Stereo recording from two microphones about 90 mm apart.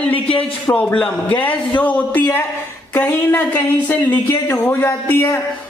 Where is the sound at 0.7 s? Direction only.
25° left (ahead or behind).